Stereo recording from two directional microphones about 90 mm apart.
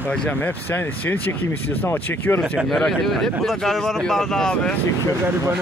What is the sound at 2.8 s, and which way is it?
Speech, 5° left (ahead or behind).